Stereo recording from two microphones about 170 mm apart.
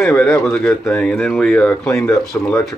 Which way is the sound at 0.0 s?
5° left (ahead or behind).